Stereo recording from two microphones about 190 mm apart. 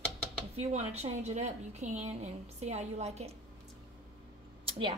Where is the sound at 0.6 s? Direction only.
35° right (ahead or behind).